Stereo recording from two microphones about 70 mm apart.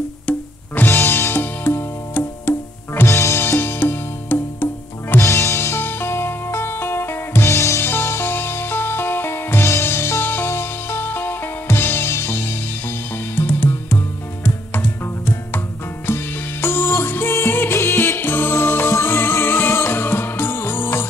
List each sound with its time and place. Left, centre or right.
0.3 s music: left
0.8 s music: left
3.1 s music: left
5.2 s music: left
7.5 s music: left
7.8 s music: left